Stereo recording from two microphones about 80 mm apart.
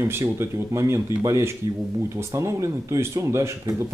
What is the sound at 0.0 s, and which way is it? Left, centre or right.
Speech, right.